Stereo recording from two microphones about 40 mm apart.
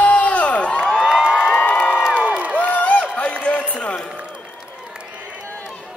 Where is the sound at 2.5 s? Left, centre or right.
Left.